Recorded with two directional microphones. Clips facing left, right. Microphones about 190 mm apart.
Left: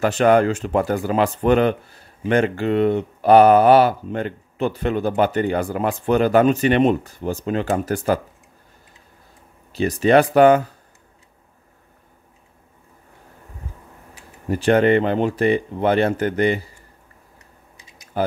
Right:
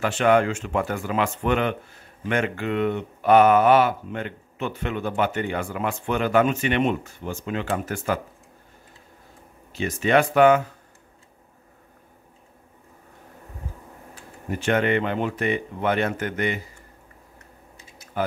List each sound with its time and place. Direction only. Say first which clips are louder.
0.0 s speech: left 4 dB; 40° left (ahead or behind)
9.7 s speech: left 6 dB; 35° left (ahead or behind)
14.5 s speech: left 6 dB; 35° left (ahead or behind)
18.1 s tick-tock: left 4 dB; 35° left (ahead or behind)